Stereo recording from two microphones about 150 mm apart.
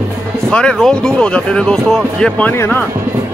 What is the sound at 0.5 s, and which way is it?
Speech, 5° left (ahead or behind).